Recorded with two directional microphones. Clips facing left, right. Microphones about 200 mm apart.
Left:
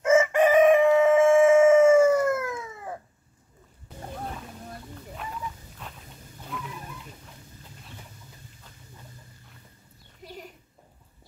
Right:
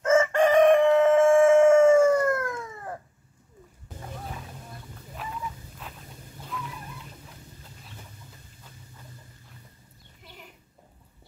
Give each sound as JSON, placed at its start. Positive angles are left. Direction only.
{"t": 0.0, "sound": "chicken", "side_deg": 10}
{"t": 6.5, "sound": "wild animals", "side_deg": 0}
{"t": 10.2, "sound": "a sound", "side_deg": 40}